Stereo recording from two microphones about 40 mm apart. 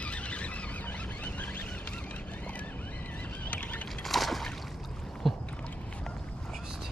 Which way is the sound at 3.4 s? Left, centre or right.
Left.